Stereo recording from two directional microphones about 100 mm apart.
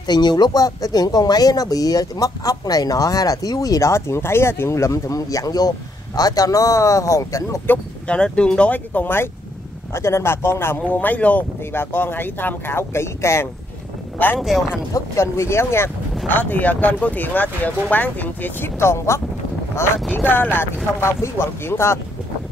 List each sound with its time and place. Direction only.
0.0 s speech: 45° left (ahead or behind)
7.6 s speech: 15° left (ahead or behind)
14.4 s speech: 5° right (ahead or behind)
15.0 s speech: 30° left (ahead or behind)